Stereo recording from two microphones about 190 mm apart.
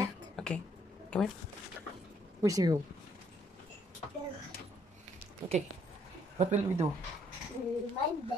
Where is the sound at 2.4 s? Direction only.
20° right (ahead or behind).